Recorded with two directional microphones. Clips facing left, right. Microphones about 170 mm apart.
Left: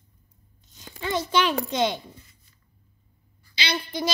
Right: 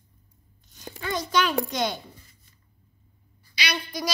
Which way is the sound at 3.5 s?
25° left (ahead or behind).